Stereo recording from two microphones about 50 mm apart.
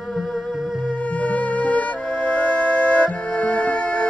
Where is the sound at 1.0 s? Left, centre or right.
Left.